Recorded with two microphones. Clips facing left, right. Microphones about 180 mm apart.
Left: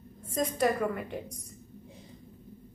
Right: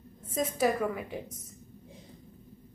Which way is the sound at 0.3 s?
5° right (ahead or behind).